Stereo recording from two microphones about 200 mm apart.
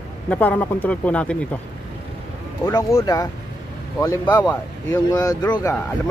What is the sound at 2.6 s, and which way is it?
Speech, 15° left (ahead or behind).